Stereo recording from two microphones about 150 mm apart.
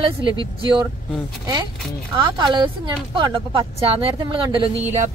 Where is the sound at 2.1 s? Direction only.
30° right (ahead or behind).